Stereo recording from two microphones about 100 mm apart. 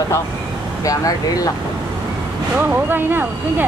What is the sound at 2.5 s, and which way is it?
Speech, 20° right (ahead or behind).